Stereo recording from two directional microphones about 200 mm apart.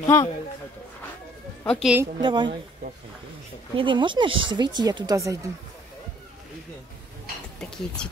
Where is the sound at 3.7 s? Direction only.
25° right (ahead or behind).